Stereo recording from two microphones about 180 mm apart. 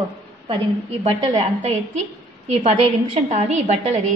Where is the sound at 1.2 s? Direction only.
40° right (ahead or behind).